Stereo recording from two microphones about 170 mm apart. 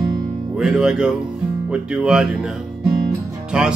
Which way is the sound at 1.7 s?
5° right (ahead or behind).